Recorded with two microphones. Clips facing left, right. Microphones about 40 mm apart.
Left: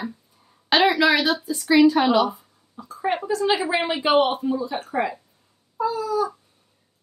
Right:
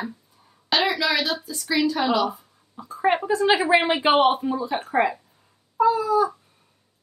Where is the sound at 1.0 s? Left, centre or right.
Left.